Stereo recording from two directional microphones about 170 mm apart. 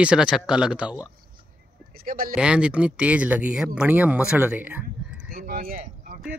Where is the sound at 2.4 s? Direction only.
5° right (ahead or behind).